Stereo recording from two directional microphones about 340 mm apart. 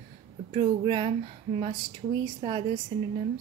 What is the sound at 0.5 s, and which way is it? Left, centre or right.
Speech, centre.